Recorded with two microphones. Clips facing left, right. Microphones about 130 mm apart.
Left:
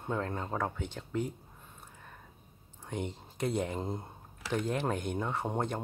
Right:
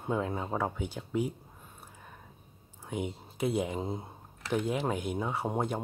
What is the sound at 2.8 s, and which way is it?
Speech, 5° right (ahead or behind).